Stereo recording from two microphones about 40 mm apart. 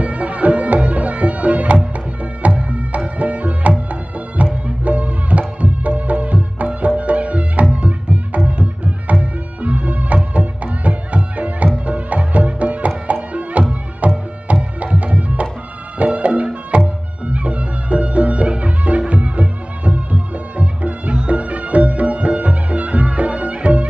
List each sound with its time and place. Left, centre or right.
0.0 s music: right